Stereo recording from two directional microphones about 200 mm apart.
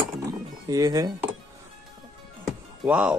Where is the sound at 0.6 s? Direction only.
15° right (ahead or behind).